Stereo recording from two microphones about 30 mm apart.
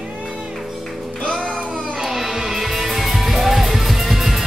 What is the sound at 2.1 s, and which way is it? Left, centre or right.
Music, centre.